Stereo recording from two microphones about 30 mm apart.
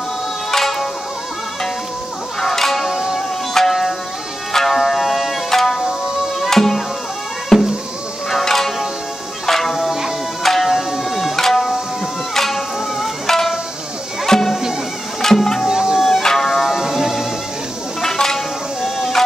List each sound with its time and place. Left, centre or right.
0.5 s music: centre
2.4 s music: centre
2.9 s music: centre
3.2 s music: centre
11.3 s music: centre
15.6 s music: centre
16.2 s music: centre
16.7 s music: centre
18.0 s a sound: centre
18.8 s music: centre